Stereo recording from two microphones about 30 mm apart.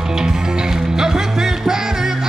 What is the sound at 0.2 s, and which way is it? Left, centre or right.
Music, right.